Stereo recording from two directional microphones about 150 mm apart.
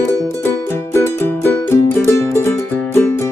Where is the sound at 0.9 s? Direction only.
15° left (ahead or behind).